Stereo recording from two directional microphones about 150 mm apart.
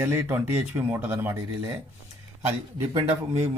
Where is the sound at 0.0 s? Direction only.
15° right (ahead or behind).